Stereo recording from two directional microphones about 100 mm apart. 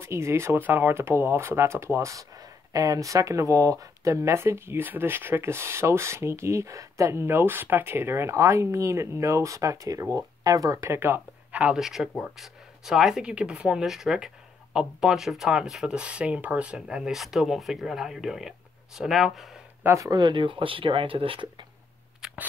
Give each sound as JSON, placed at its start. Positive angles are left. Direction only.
{"t": 0.0, "sound": "speech", "side_deg": -30}
{"t": 11.8, "sound": "speech", "side_deg": -5}
{"t": 19.8, "sound": "speech", "side_deg": -25}
{"t": 20.1, "sound": "speech", "side_deg": -45}
{"t": 22.2, "sound": "a sound", "side_deg": -15}